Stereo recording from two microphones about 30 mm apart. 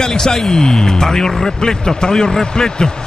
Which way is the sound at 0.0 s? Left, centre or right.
Centre.